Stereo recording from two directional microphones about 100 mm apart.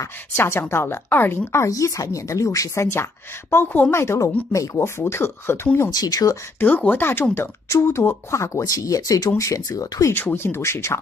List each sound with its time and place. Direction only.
0.0 s speech: 25° left (ahead or behind)
5.9 s speech: 40° left (ahead or behind)
6.6 s speech: 15° left (ahead or behind); by 10.1 s 35° left (ahead or behind)
10.1 s speech: 20° left (ahead or behind)